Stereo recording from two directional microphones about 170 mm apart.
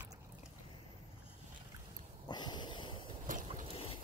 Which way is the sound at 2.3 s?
25° left (ahead or behind).